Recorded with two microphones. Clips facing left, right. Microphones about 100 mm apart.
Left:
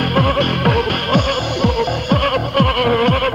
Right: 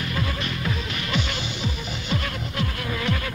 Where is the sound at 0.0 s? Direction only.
60° left (ahead or behind).